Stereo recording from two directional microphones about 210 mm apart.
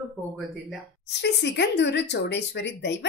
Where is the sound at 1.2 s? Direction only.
55° left (ahead or behind).